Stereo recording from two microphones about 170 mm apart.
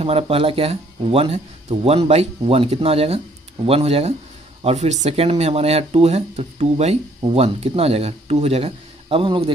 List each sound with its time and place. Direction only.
0.0 s speech: 35° right (ahead or behind)